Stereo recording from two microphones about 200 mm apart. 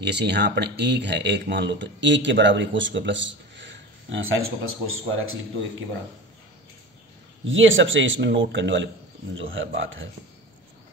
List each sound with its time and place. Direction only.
0.0 s speech: 60° right (ahead or behind); by 5.4 s 90° right
7.4 s speech: 70° right (ahead or behind)